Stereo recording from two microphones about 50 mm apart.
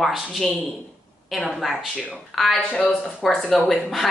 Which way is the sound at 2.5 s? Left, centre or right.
Left.